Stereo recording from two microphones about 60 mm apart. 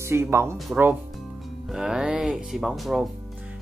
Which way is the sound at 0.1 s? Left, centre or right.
Right.